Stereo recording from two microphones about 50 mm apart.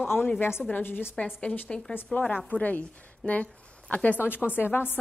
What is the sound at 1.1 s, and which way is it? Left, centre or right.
A woman's voice, left.